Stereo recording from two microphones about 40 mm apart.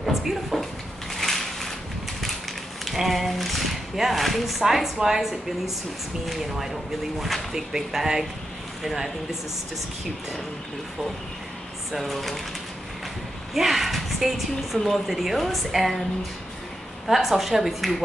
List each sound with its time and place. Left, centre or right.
0.0 s speech: centre
1.1 s a sound: centre
2.8 s speech: centre
7.5 s speech: centre
11.9 s speech: centre
13.6 s a woman's voice: centre
17.1 s speech: centre